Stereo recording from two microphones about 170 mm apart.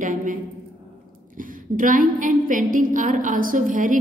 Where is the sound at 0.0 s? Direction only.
50° right (ahead or behind).